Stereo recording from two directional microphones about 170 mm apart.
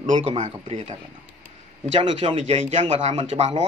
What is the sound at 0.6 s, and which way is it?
Speech, 35° right (ahead or behind).